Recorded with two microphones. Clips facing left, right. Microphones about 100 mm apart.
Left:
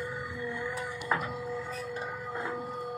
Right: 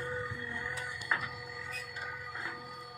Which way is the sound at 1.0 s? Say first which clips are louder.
Left 6 dB; 35° left (ahead or behind).